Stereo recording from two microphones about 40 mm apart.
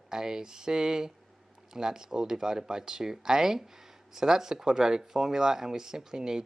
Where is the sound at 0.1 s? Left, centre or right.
Centre.